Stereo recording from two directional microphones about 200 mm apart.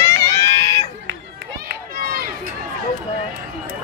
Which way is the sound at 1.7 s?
45° right (ahead or behind).